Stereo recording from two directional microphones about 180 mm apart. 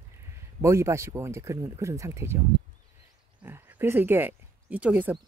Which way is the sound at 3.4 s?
10° right (ahead or behind).